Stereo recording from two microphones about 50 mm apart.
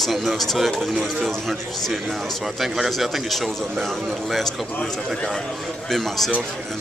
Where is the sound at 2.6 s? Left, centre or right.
Centre.